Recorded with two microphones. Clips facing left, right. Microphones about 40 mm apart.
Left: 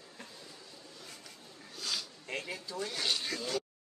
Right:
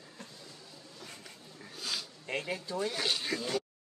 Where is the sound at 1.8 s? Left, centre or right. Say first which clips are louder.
Even; centre.